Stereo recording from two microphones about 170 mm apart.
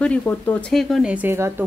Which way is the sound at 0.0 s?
10° left (ahead or behind).